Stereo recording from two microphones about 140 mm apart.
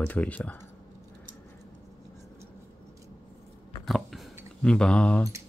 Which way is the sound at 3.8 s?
Centre (ahead or behind).